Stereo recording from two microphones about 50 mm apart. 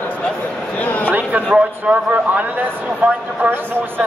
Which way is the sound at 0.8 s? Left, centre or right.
Left.